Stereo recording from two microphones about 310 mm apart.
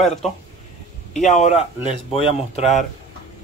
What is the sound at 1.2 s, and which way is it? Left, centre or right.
Speech, left.